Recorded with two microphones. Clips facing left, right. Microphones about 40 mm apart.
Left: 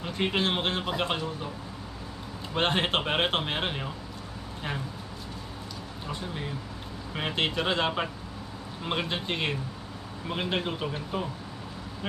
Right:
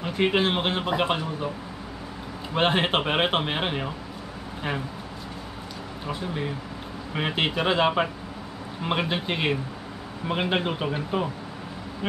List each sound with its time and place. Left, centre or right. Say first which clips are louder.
0.0 s a man's voice: right 5 dB; centre
2.5 s a man's voice: right 4 dB; centre
6.1 s a man's voice: right 5 dB; centre